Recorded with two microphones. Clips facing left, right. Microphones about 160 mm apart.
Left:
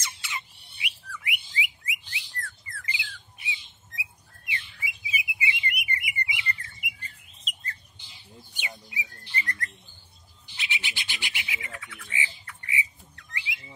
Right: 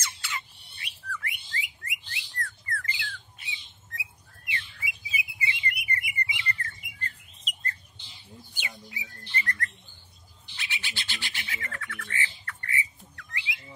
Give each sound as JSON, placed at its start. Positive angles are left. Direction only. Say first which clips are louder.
{"t": 0.0, "sound": "bird", "louder": "even", "side_deg": 20}
{"t": 4.5, "sound": "chirp", "louder": "even", "side_deg": 20}
{"t": 8.5, "sound": "bird", "louder": "left 3 dB", "side_deg": 15}
{"t": 13.1, "sound": "bird", "louder": "even", "side_deg": 25}